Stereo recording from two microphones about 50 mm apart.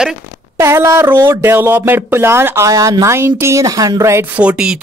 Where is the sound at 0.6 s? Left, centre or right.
Right.